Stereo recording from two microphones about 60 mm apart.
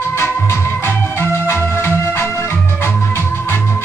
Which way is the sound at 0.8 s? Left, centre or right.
Left.